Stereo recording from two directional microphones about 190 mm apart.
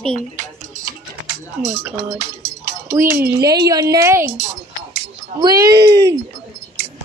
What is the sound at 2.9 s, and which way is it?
A woman's voice, 15° right (ahead or behind).